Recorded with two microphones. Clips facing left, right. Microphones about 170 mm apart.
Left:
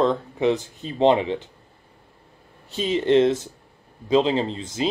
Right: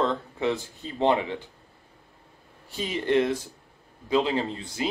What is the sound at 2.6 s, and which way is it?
Speech, 20° left (ahead or behind).